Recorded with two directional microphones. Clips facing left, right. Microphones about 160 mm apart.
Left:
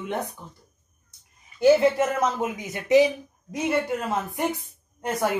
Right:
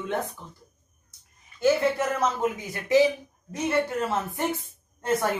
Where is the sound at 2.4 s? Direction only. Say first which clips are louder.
Right 1 dB; 20° left (ahead or behind).